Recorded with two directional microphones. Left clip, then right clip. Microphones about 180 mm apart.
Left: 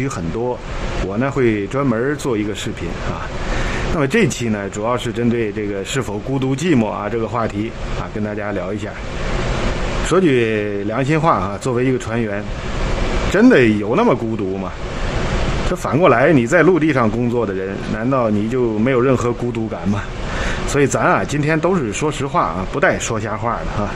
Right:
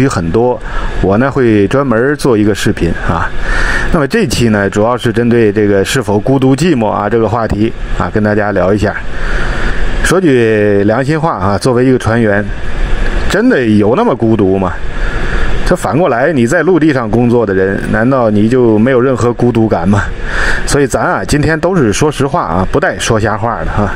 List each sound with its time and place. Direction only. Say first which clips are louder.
1.1 s speech: right 8 dB; 30° right (ahead or behind)
4.0 s speech: right 1 dB; 30° right (ahead or behind)
10.0 s speech: right 7 dB; 35° right (ahead or behind)
15.7 s speech: right 4 dB; 30° right (ahead or behind)